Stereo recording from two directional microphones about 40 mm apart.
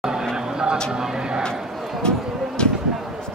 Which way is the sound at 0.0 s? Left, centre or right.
Centre.